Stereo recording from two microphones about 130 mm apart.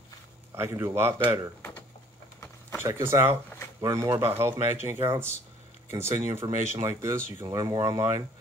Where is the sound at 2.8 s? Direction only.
20° right (ahead or behind).